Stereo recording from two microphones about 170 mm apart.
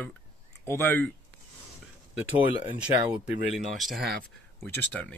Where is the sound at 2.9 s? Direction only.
25° right (ahead or behind).